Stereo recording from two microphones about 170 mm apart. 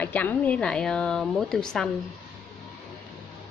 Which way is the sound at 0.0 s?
10° left (ahead or behind).